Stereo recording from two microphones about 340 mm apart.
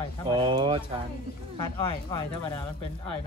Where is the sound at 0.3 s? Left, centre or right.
Centre.